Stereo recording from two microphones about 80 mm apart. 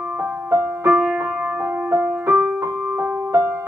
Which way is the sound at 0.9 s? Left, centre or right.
Centre.